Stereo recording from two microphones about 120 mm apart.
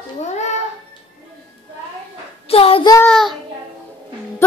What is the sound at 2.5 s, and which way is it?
Child singing, 50° left (ahead or behind).